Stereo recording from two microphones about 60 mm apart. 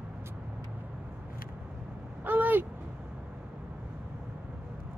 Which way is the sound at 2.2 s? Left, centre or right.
Right.